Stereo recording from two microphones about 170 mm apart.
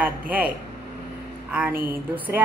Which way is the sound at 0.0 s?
10° right (ahead or behind).